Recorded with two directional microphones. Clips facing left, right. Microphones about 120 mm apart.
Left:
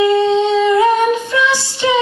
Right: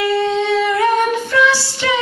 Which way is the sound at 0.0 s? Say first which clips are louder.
Left 4 dB; 15° left (ahead or behind).